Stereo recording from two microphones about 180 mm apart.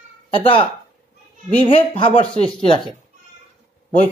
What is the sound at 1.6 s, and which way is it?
Speech, 30° left (ahead or behind).